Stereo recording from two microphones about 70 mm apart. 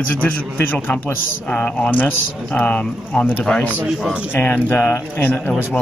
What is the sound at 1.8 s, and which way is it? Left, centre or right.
Speech, left.